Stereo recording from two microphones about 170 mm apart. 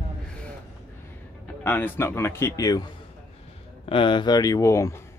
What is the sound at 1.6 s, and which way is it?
Speech, 10° left (ahead or behind).